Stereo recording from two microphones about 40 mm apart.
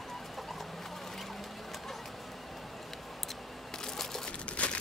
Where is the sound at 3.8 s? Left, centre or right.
Centre.